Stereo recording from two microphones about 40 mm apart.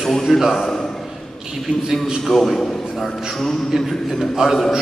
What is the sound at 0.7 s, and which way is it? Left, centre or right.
Speech, centre.